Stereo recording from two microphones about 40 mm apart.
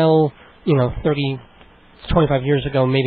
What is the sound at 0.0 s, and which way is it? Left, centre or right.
A man's voice, centre.